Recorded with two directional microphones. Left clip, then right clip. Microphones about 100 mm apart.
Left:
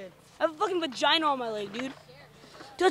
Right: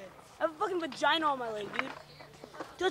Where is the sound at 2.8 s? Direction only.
20° left (ahead or behind).